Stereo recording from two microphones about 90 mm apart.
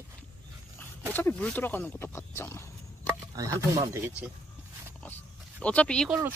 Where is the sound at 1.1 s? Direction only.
20° left (ahead or behind).